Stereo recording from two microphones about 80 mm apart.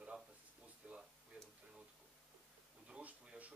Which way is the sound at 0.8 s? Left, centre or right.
Centre.